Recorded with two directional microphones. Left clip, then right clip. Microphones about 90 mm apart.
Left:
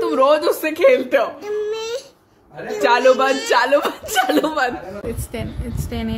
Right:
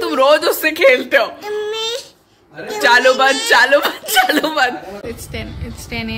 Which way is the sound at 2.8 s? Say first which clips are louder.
Right 3 dB; 5° left (ahead or behind).